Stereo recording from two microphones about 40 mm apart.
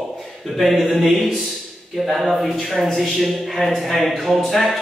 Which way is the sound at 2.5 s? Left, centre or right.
Centre.